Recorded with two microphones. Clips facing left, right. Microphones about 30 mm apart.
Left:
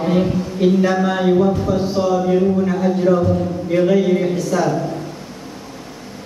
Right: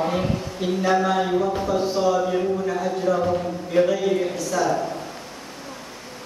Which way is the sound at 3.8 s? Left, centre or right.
Centre.